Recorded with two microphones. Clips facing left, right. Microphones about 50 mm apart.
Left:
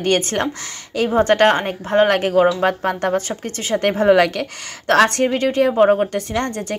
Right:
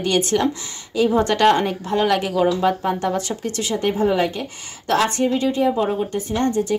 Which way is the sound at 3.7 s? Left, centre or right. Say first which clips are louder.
Left 6 dB; left.